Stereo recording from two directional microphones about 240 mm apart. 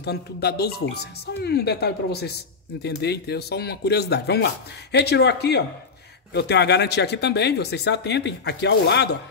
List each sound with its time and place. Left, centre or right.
0.0 s speech: left